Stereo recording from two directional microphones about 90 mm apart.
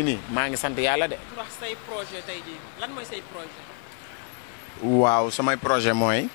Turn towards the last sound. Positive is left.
turn(degrees=20)  # may be behind; listen again after turning